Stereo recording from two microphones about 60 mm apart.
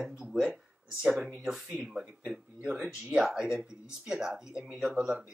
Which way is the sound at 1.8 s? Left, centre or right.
Centre.